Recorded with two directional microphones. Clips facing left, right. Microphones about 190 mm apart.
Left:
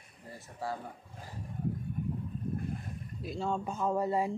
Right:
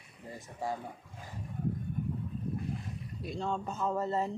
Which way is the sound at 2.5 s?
50° left (ahead or behind).